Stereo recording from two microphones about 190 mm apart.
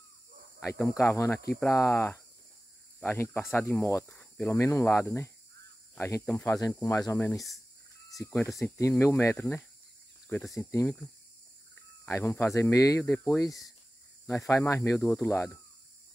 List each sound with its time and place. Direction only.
0.6 s speech: 10° left (ahead or behind)
11.7 s cricket: 10° left (ahead or behind)
12.5 s speech: 15° left (ahead or behind)